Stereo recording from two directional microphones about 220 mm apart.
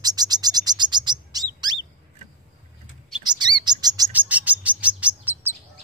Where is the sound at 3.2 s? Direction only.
20° right (ahead or behind).